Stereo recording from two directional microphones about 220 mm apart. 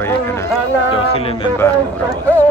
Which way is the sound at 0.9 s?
25° left (ahead or behind).